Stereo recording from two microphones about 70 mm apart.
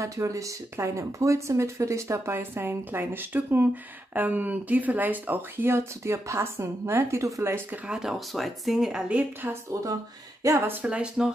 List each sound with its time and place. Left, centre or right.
0.0 s speech: right
7.8 s speech: centre
9.5 s speech: right
10.7 s speech: centre